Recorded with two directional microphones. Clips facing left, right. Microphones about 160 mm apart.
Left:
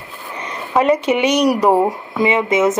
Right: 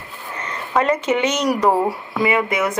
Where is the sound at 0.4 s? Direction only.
15° left (ahead or behind).